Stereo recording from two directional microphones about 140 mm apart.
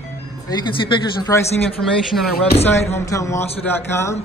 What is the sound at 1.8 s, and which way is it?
Speech, centre (ahead or behind).